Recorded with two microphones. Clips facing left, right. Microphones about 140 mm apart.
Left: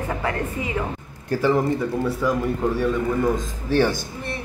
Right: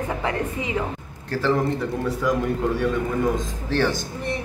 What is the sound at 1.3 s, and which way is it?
Speech, 15° left (ahead or behind).